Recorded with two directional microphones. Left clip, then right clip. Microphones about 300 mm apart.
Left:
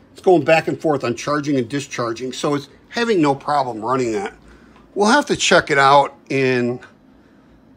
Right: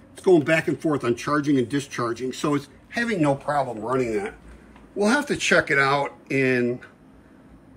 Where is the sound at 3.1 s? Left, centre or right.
Centre.